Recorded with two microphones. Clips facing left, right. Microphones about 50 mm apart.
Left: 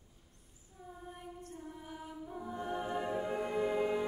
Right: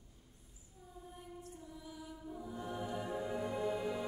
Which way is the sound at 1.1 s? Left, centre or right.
Left.